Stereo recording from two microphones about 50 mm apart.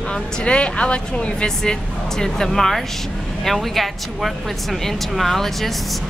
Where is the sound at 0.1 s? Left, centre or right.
Left.